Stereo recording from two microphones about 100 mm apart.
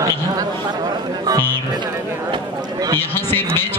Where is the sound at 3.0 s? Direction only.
20° left (ahead or behind).